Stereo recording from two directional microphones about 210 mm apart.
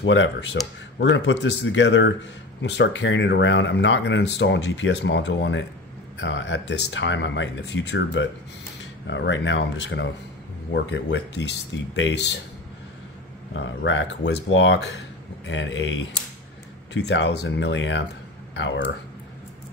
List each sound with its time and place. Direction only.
0.0 s speech: 60° left (ahead or behind)
13.5 s speech: 60° left (ahead or behind)